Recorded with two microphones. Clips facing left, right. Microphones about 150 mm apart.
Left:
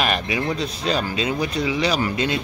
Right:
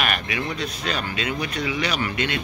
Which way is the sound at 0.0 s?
30° left (ahead or behind).